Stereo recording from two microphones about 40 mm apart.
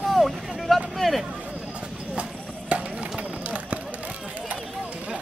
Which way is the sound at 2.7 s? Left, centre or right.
Right.